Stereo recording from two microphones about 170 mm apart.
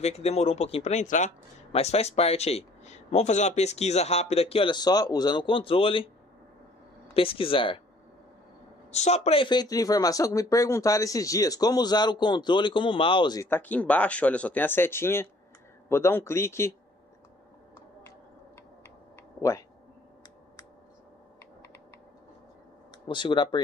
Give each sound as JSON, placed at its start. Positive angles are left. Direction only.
{"t": 0.0, "sound": "speech", "side_deg": 40}
{"t": 7.2, "sound": "speech", "side_deg": 30}
{"t": 8.9, "sound": "speech", "side_deg": 40}
{"t": 13.5, "sound": "speech", "side_deg": 10}
{"t": 23.0, "sound": "speech", "side_deg": 25}